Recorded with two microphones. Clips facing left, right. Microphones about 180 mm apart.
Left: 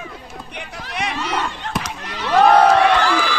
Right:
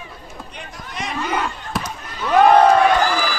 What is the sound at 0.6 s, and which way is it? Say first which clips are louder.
Run: left 4 dB; 75° left (ahead or behind).